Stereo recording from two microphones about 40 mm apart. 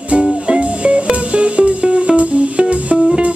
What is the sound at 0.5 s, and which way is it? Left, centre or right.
Music, right.